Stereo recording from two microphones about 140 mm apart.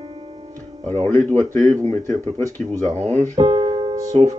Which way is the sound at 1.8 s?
55° right (ahead or behind).